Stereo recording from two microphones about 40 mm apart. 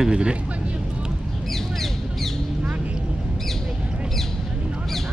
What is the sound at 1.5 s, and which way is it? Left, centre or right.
Bird, centre.